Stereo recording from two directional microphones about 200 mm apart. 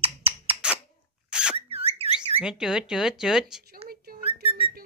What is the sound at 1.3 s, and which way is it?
Squeak, 5° right (ahead or behind).